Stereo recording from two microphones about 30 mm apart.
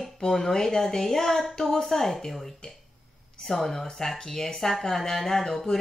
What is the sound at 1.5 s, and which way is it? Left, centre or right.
Speech, left.